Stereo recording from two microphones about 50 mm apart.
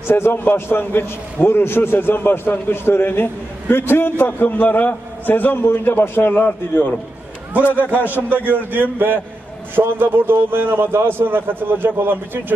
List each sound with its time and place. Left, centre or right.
0.1 s a man's voice: left
7.7 s a man's voice: right